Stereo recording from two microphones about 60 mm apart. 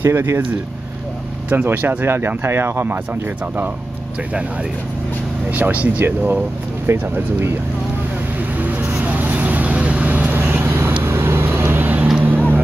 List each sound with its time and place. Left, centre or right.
0.0 s speech: right
5.5 s speech: right
6.9 s speech: right
8.5 s vehicle: right
11.1 s vehicle: right